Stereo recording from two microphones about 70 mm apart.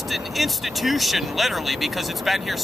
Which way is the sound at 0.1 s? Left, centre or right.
Centre.